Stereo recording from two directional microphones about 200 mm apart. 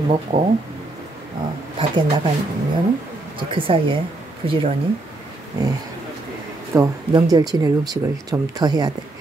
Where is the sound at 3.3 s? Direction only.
25° right (ahead or behind).